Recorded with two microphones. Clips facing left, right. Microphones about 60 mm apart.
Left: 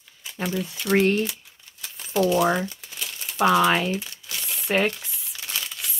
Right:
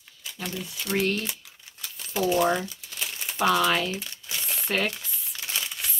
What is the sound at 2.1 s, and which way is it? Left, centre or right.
Speech, centre.